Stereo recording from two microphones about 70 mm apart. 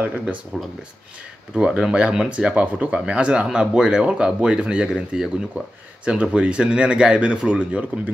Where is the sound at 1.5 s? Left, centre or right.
Centre.